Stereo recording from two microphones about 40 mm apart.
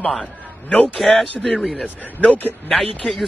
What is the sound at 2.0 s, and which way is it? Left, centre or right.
Speech, left.